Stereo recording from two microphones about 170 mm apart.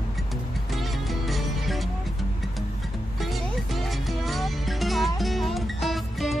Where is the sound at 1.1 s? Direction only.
Centre (ahead or behind).